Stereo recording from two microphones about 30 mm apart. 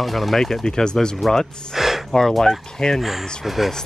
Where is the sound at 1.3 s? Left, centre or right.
Centre.